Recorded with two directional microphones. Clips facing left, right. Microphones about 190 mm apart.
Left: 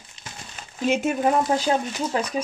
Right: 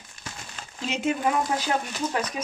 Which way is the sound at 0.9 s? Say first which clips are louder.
Left 9 dB; 50° left (ahead or behind).